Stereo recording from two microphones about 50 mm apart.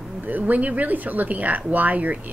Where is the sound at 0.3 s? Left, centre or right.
Right.